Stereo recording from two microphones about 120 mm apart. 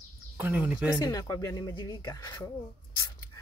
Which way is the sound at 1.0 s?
25° left (ahead or behind).